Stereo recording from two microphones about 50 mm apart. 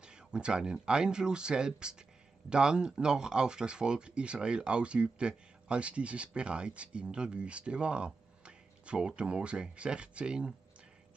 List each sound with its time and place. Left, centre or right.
0.0 s speech: centre